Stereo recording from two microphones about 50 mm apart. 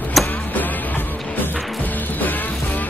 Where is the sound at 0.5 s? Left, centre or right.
Left.